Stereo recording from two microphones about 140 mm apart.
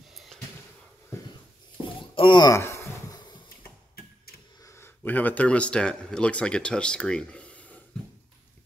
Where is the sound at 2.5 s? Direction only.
20° left (ahead or behind).